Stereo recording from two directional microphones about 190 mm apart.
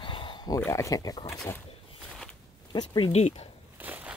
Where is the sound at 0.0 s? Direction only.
25° left (ahead or behind).